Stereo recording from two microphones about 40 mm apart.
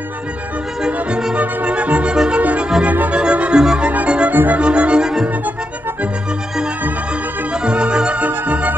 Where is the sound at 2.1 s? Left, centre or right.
Right.